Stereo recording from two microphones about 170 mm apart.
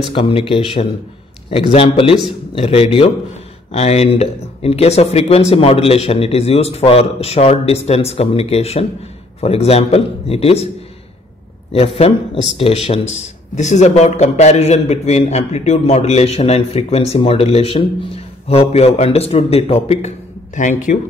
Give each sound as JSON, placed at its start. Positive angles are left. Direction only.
{"t": 0.1, "sound": "a man's voice", "side_deg": 30}
{"t": 11.7, "sound": "a man's voice", "side_deg": 35}
{"t": 20.5, "sound": "speech", "side_deg": 45}